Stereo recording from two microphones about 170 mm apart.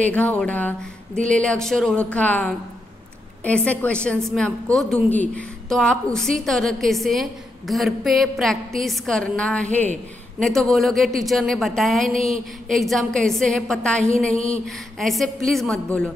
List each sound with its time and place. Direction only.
0.0 s a woman's voice: 10° left (ahead or behind)
14.3 s music: 35° left (ahead or behind)
15.0 s a woman's voice: centre (ahead or behind)